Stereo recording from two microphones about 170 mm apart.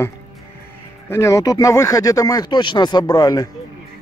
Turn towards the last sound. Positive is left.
turn(degrees=20)  # may be behind; listen again after turning